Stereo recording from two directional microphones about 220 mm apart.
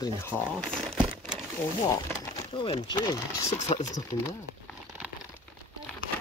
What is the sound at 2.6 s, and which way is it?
Speech, 20° left (ahead or behind).